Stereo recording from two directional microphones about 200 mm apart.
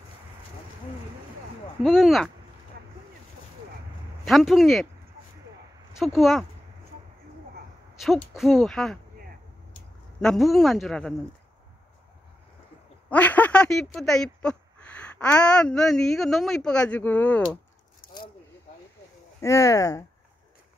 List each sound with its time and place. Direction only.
1.8 s speech: centre (ahead or behind)
4.2 s speech: centre (ahead or behind)
5.9 s speech: centre (ahead or behind)
8.0 s speech: centre (ahead or behind)
10.2 s speech: centre (ahead or behind)
13.1 s speech: 10° left (ahead or behind)
19.4 s speech: 15° left (ahead or behind)